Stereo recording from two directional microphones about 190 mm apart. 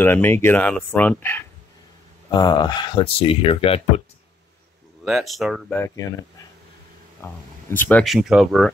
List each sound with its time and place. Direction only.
0.0 s speech: 10° left (ahead or behind)
2.3 s speech: 20° left (ahead or behind)
5.0 s speech: centre (ahead or behind)
5.8 s speech: 15° left (ahead or behind)
7.2 s speech: 15° left (ahead or behind)
8.0 s speech: centre (ahead or behind)